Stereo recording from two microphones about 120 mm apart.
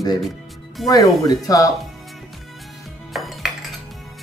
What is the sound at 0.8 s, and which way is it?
Speech, 30° left (ahead or behind).